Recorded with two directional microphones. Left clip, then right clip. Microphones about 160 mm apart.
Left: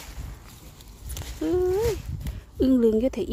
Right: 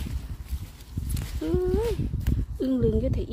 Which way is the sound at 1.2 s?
20° left (ahead or behind).